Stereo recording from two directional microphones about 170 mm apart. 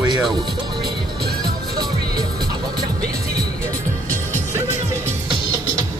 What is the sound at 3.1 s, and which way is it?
Music, 65° right (ahead or behind).